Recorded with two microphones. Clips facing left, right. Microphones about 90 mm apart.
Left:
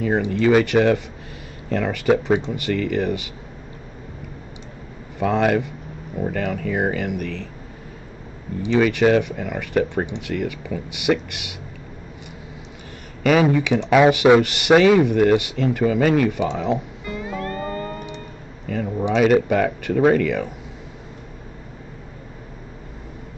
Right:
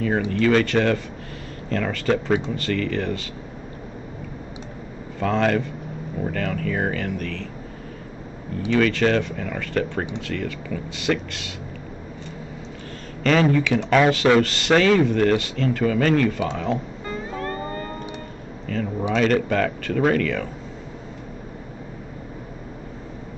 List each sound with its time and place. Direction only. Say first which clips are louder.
0.3 s speech: left 3 dB; 10° left (ahead or behind)
5.2 s speech: left 2 dB; 10° left (ahead or behind)
8.6 s speech: left 3 dB; 15° left (ahead or behind)
13.2 s speech: left 2 dB; 10° left (ahead or behind)
18.7 s speech: left 2 dB; 15° left (ahead or behind)